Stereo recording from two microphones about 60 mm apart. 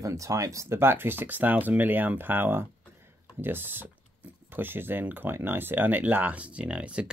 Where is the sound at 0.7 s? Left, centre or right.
Right.